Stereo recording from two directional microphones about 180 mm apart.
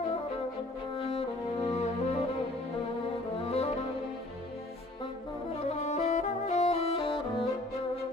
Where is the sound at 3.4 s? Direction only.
35° left (ahead or behind).